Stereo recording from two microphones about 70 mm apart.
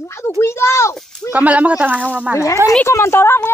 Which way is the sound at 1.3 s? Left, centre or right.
Right.